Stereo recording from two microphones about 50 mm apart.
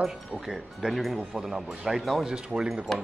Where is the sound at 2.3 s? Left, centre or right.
Centre.